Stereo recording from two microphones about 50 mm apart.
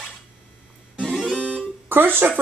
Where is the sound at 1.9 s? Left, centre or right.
Right.